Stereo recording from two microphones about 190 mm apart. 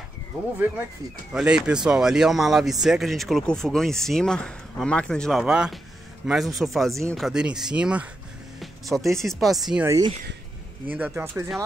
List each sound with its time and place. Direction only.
1.3 s speech: 5° right (ahead or behind)
8.5 s music: centre (ahead or behind)
9.1 s speech: centre (ahead or behind)
9.8 s speech: 20° right (ahead or behind)